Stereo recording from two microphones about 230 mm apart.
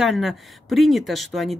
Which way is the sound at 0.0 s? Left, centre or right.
Centre.